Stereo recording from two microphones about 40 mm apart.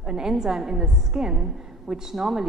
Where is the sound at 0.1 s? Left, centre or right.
Centre.